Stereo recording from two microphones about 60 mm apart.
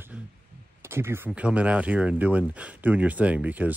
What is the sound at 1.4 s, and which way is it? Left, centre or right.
Speech, right.